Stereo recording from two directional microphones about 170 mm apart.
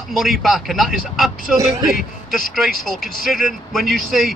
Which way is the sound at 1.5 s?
20° right (ahead or behind).